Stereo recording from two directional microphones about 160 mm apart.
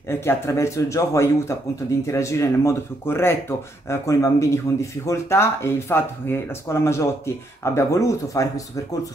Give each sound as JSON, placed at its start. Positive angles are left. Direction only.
{"t": 0.1, "sound": "speech", "side_deg": 15}